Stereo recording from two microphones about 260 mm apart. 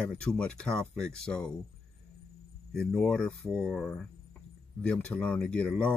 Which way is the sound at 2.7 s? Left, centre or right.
Centre.